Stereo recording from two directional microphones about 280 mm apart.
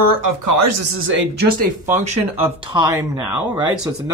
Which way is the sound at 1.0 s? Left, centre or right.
Right.